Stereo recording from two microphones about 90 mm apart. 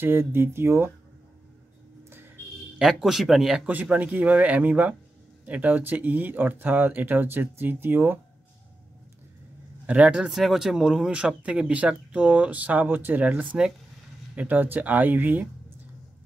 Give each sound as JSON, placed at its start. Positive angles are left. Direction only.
{"t": 0.0, "sound": "speech", "side_deg": -25}
{"t": 2.8, "sound": "speech", "side_deg": -5}
{"t": 3.6, "sound": "speech", "side_deg": -20}
{"t": 9.8, "sound": "speech", "side_deg": -10}